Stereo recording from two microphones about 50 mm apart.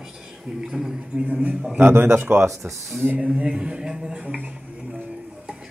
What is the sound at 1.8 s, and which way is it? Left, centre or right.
Speech, right.